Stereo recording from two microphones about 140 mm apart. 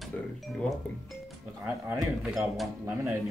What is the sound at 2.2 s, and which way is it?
Speech, 5° right (ahead or behind).